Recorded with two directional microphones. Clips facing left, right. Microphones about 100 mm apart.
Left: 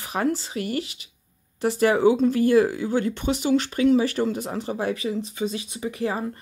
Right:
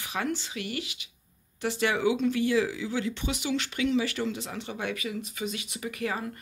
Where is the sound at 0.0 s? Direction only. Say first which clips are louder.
Left 7 dB; 35° left (ahead or behind).